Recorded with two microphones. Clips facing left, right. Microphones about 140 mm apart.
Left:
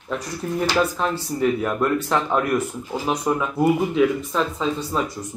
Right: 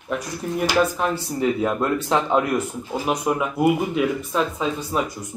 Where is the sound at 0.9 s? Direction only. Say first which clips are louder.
Even; 15° right (ahead or behind).